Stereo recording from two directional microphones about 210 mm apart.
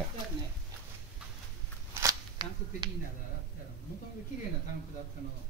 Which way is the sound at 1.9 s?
20° right (ahead or behind).